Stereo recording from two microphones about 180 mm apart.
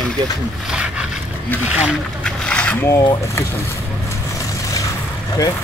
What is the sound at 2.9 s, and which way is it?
Speech, 20° left (ahead or behind).